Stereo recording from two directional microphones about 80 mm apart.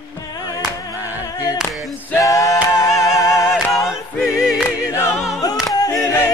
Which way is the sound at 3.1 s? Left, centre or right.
Left.